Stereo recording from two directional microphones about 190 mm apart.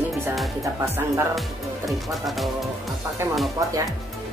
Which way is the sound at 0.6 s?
15° right (ahead or behind).